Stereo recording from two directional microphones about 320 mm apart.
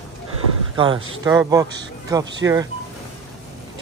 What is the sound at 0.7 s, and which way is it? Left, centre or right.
Speech, centre.